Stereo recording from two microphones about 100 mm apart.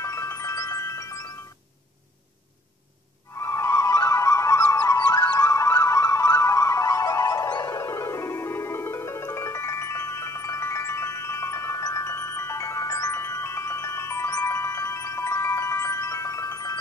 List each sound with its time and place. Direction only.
0.0 s music: 30° left (ahead or behind)
3.3 s music: 30° left (ahead or behind)